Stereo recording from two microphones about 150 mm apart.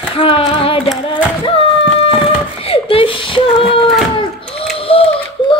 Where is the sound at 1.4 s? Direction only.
40° left (ahead or behind).